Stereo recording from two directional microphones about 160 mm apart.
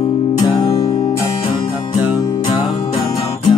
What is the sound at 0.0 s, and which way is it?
Music, 30° left (ahead or behind).